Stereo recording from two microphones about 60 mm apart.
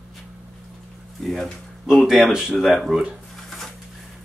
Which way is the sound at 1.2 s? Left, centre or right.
Centre.